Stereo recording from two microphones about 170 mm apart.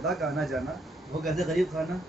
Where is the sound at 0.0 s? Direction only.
Centre (ahead or behind).